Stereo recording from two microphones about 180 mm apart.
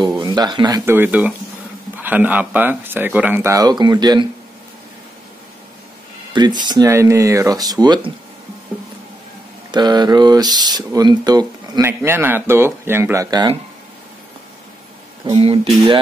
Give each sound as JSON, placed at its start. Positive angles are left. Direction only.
{"t": 0.0, "sound": "speech", "side_deg": -25}
{"t": 6.3, "sound": "speech", "side_deg": -25}
{"t": 9.7, "sound": "speech", "side_deg": -25}
{"t": 15.2, "sound": "speech", "side_deg": -30}